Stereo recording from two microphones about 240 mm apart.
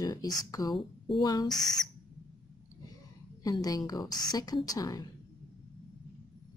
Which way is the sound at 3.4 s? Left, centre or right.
Centre.